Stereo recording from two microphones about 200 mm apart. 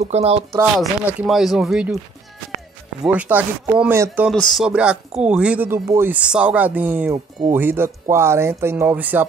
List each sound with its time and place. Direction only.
0.0 s speech: 30° right (ahead or behind)
0.7 s speech: centre (ahead or behind)
3.0 s speech: 5° right (ahead or behind)
4.3 s speech: centre (ahead or behind)